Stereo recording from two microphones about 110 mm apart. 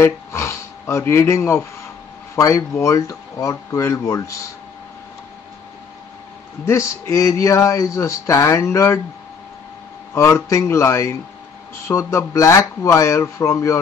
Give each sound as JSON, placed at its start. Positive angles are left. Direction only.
{"t": 0.0, "sound": "speech", "side_deg": 25}
{"t": 6.6, "sound": "speech", "side_deg": 25}
{"t": 10.1, "sound": "speech", "side_deg": 25}